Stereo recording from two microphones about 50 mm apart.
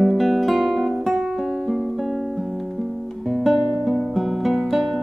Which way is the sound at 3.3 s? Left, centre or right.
Centre.